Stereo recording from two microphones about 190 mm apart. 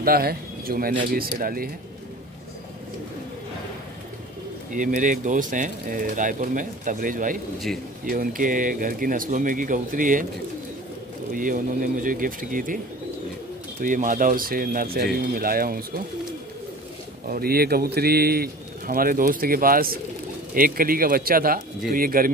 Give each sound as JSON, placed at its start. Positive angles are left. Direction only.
{"t": 0.0, "sound": "speech", "side_deg": -50}
{"t": 4.7, "sound": "speech", "side_deg": -45}
{"t": 11.3, "sound": "speech", "side_deg": -45}
{"t": 13.7, "sound": "speech", "side_deg": -45}
{"t": 17.3, "sound": "speech", "side_deg": -55}